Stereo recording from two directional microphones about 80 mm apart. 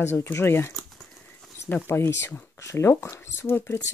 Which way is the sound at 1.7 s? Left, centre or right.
Left.